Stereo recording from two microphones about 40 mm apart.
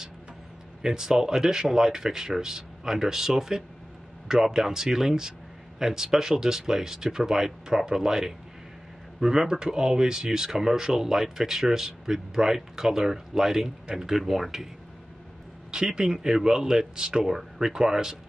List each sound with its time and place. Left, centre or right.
0.8 s speech: centre
15.7 s speech: centre